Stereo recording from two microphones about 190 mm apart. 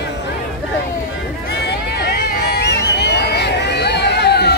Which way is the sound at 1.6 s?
60° left (ahead or behind).